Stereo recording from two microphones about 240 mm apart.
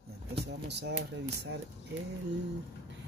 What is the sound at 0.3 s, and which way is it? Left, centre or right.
Speech, right.